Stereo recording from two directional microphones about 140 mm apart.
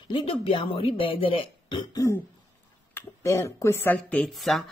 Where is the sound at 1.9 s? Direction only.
20° left (ahead or behind); by 4.6 s centre (ahead or behind).